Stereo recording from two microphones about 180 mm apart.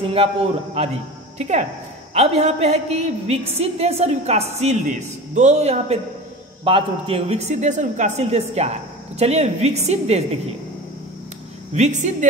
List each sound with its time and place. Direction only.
0.0 s a woman's voice: 30° right (ahead or behind)
11.7 s a woman's voice: 40° right (ahead or behind)